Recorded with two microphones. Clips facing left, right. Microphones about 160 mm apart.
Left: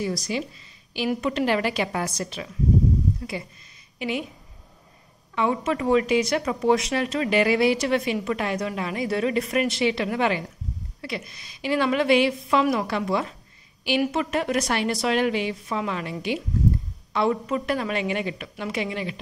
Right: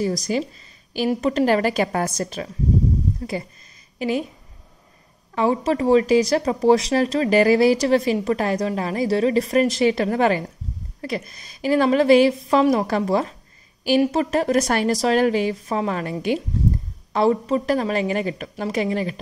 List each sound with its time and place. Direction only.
0.0 s speech: 40° right (ahead or behind)
4.0 s speech: 40° right (ahead or behind)
5.3 s speech: 35° right (ahead or behind)
17.1 s speech: 35° right (ahead or behind)